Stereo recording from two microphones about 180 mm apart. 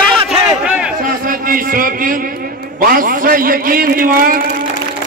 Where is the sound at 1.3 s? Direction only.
50° right (ahead or behind).